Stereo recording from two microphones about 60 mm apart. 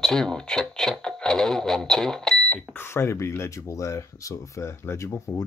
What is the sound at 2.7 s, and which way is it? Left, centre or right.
Speech, left.